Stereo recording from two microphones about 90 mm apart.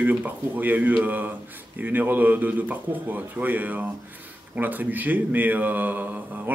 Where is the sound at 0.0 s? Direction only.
20° right (ahead or behind).